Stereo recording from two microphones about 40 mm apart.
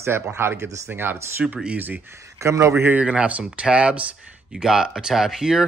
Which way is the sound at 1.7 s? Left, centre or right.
Right.